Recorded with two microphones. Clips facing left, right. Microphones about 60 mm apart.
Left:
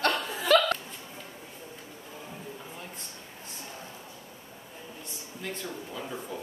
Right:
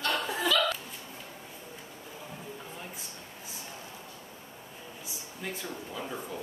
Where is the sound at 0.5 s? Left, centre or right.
Left.